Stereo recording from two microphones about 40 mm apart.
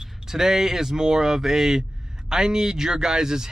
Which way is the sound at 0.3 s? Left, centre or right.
Centre.